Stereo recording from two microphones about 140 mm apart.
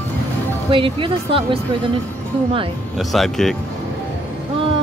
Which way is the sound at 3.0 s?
Centre (ahead or behind).